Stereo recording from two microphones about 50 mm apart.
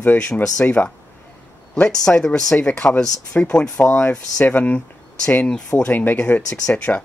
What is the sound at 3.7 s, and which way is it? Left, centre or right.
Speech, left.